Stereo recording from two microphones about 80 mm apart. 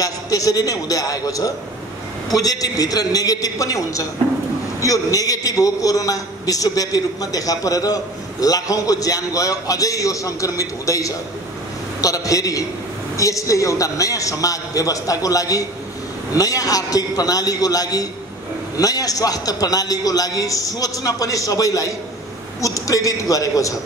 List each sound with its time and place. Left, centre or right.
0.0 s a man's voice: left